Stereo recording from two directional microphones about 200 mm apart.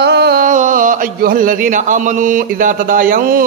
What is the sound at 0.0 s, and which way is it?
A man's voice, 55° right (ahead or behind).